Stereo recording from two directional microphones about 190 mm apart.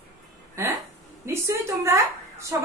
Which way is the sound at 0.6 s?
15° right (ahead or behind).